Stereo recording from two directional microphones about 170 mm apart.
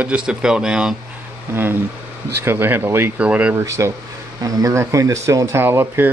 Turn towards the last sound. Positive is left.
turn(degrees=-10)  # may be behind; listen again after turning